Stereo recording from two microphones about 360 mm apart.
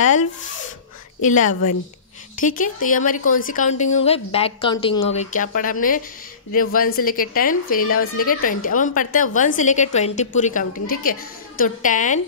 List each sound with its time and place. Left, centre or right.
1.2 s a woman's voice: left
1.5 s a woman's voice: left
2.4 s a woman's voice: left